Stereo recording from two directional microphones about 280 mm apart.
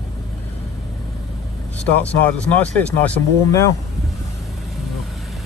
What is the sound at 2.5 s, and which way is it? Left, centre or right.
Speech, centre.